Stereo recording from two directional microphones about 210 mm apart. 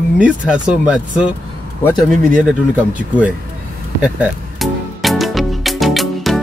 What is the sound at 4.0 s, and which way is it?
Music, centre (ahead or behind).